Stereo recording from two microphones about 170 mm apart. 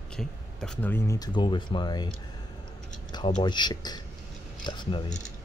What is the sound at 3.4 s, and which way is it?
Speech, 25° left (ahead or behind).